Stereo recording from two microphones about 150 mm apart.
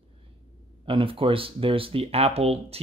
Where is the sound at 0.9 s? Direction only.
35° right (ahead or behind).